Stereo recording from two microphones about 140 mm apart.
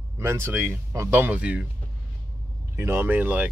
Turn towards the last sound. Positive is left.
turn(degrees=-10)  # may be behind; listen again after turning